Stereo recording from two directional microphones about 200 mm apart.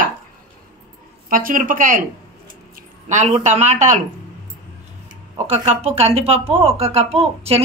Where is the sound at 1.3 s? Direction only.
45° right (ahead or behind).